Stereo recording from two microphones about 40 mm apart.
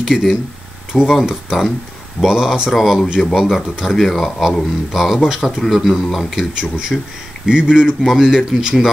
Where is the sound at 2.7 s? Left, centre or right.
Centre.